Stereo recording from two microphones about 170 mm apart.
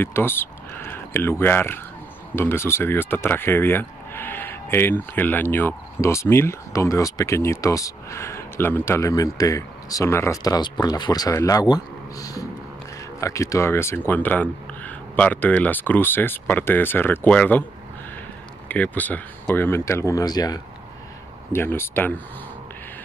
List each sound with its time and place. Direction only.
0.0 s speech: 15° left (ahead or behind)
18.7 s speech: 10° left (ahead or behind)